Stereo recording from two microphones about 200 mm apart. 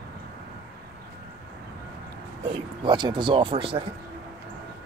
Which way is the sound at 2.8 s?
20° right (ahead or behind).